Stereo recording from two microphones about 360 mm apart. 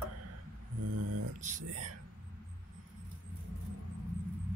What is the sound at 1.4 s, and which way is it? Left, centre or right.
Speech, right.